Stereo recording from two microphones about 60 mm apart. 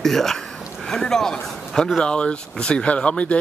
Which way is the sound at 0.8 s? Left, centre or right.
Centre.